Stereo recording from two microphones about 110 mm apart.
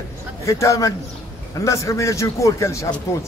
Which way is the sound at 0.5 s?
30° left (ahead or behind).